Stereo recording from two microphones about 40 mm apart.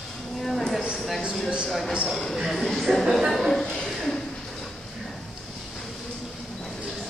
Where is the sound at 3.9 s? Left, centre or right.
Centre.